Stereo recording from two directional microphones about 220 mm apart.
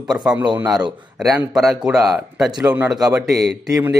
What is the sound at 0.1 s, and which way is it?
A man's voice, 5° right (ahead or behind).